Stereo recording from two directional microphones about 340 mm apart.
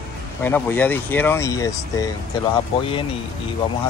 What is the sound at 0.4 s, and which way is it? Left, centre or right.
Speech, centre.